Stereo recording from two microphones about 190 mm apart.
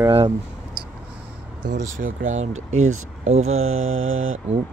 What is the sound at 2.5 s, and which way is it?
Mantra, 90° right.